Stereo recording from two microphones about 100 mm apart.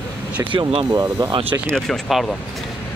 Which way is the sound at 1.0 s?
20° right (ahead or behind).